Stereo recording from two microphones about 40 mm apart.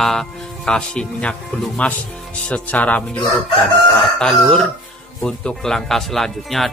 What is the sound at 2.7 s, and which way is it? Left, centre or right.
Speech, left.